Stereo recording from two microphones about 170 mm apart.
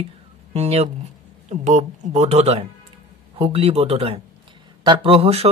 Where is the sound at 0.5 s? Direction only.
35° right (ahead or behind).